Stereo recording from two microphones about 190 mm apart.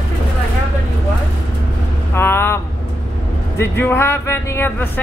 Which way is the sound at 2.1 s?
10° left (ahead or behind).